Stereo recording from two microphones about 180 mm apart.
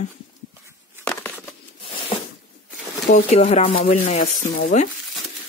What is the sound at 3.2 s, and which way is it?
Stir, 35° left (ahead or behind).